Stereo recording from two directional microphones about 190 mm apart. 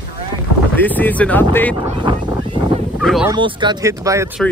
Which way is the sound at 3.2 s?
25° right (ahead or behind).